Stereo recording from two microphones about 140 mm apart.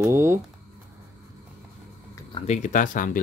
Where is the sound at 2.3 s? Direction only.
50° left (ahead or behind); by 3.0 s 70° left (ahead or behind).